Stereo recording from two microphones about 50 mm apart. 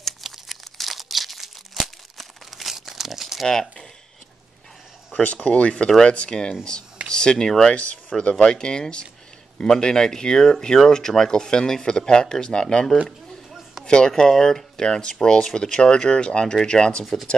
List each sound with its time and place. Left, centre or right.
0.2 s crumpling: centre
3.4 s speech: centre
5.2 s speech: left; by 7.7 s centre
7.7 s speech: left
13.5 s a sound: centre
13.8 s speech: centre
17.0 s speech: centre